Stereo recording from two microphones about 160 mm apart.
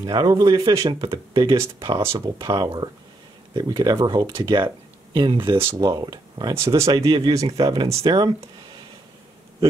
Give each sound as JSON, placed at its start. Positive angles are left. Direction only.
{"t": 0.0, "sound": "speech", "side_deg": -25}
{"t": 5.6, "sound": "speech", "side_deg": -20}
{"t": 7.1, "sound": "speech", "side_deg": -30}